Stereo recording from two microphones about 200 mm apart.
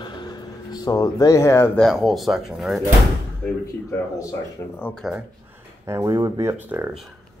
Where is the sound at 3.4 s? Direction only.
10° left (ahead or behind).